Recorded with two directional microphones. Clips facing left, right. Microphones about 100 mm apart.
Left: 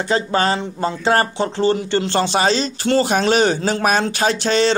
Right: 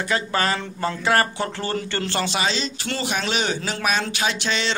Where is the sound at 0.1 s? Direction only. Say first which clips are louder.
Left 5 dB; 30° left (ahead or behind).